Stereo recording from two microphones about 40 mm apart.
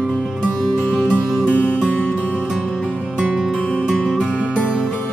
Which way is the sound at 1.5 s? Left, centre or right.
Left.